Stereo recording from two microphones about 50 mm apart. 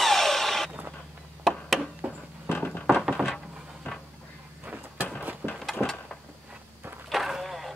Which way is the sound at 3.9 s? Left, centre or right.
Left.